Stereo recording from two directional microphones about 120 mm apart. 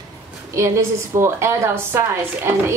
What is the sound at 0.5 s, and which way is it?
A woman's voice, 25° right (ahead or behind).